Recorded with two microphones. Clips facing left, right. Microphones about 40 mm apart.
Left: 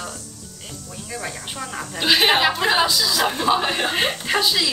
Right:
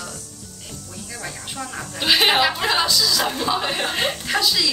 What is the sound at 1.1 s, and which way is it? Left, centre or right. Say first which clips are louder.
A woman's voice: left 2 dB; centre.